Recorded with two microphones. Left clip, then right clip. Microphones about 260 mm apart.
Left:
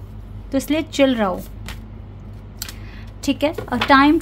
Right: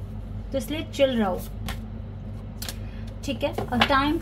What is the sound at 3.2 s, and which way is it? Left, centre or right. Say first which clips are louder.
Speech: left 7 dB; left.